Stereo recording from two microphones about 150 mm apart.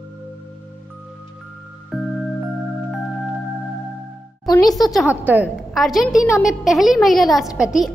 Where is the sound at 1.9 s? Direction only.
Centre (ahead or behind).